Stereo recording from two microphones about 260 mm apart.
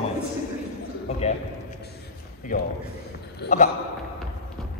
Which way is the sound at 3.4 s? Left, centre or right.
Left.